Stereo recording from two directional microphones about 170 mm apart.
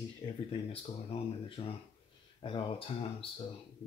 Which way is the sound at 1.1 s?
30° left (ahead or behind).